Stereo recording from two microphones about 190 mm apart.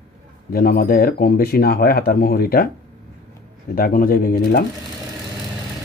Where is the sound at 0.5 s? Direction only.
50° left (ahead or behind).